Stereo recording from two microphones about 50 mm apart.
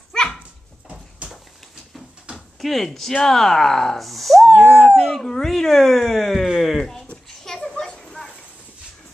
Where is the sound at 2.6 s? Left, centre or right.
Centre.